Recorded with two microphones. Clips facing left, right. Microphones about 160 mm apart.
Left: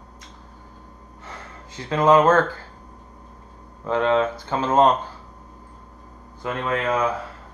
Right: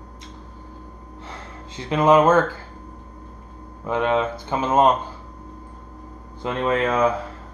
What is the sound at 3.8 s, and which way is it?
Speech, 15° right (ahead or behind).